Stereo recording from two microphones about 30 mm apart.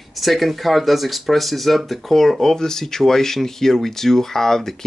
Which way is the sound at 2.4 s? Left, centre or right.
Centre.